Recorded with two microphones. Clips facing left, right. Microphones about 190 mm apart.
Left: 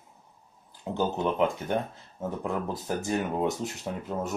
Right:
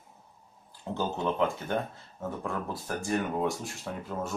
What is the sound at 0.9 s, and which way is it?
Speech, 20° left (ahead or behind).